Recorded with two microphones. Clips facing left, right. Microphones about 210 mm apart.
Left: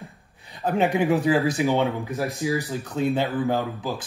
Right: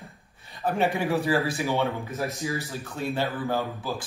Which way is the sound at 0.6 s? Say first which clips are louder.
Left 4 dB; 15° left (ahead or behind).